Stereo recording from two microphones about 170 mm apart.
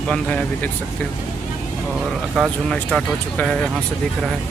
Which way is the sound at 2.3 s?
Centre (ahead or behind).